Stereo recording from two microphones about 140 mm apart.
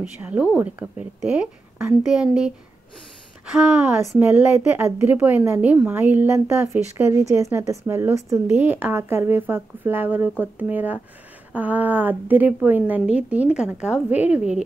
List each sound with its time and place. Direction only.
0.2 s speech: 10° right (ahead or behind)
3.6 s speech: 5° right (ahead or behind)